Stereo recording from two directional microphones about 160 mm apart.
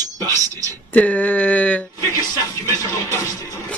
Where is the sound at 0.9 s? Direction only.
10° left (ahead or behind).